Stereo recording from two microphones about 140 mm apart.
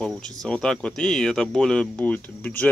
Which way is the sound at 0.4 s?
5° left (ahead or behind).